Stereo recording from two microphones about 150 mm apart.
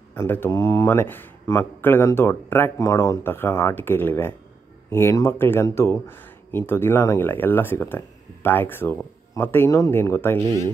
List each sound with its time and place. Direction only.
0.1 s speech: 15° left (ahead or behind)